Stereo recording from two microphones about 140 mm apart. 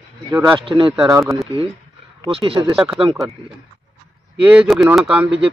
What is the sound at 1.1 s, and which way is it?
Speech, 20° right (ahead or behind).